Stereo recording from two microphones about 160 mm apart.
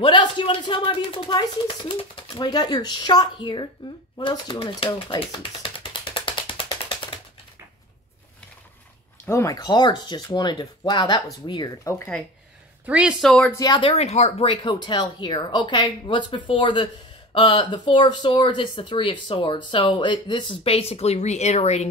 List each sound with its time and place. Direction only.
0.0 s a sound: 30° left (ahead or behind)
1.9 s speech: 30° left (ahead or behind)
6.1 s ratchet: 30° left (ahead or behind)
9.2 s speech: 20° left (ahead or behind)
12.8 s speech: 5° right (ahead or behind)
13.5 s speech: 25° left (ahead or behind)
13.8 s speech: 40° left (ahead or behind)